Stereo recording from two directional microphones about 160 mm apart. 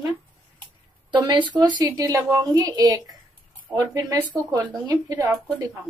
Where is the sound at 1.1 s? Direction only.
30° right (ahead or behind).